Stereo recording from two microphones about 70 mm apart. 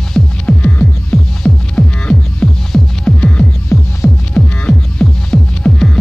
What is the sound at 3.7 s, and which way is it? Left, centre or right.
Music, left.